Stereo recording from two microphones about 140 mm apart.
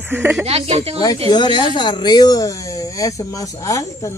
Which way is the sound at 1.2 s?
35° left (ahead or behind).